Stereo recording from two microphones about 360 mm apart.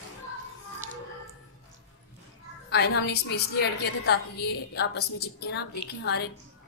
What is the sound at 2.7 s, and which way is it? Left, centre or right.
A woman's voice, left.